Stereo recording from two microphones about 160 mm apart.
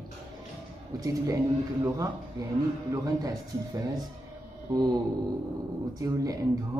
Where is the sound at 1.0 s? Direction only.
20° right (ahead or behind).